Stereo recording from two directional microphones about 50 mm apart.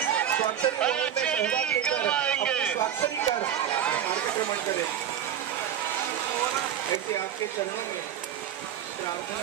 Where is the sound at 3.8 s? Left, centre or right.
Left.